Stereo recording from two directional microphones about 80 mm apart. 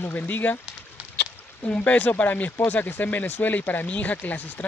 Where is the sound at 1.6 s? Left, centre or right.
Centre.